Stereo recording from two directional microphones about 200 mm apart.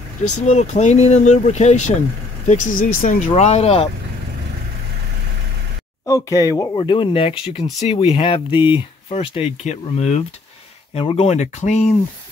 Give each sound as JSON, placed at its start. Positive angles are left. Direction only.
{"t": 0.4, "sound": "speech", "side_deg": 35}
{"t": 6.0, "sound": "speech", "side_deg": 15}
{"t": 6.8, "sound": "speech", "side_deg": 25}